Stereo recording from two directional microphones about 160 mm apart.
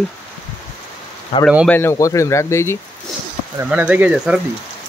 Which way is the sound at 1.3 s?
40° left (ahead or behind).